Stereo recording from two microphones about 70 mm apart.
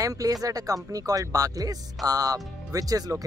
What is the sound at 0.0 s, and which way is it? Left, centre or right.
Speech, right.